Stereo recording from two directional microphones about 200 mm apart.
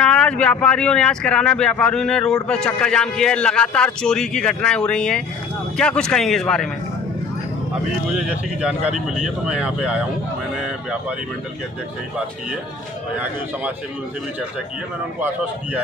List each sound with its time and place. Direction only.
0.0 s speech: 5° left (ahead or behind)
8.3 s speech: 5° right (ahead or behind)
15.1 s speech: 10° right (ahead or behind)